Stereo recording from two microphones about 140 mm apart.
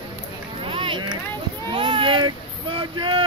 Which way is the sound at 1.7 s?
35° right (ahead or behind).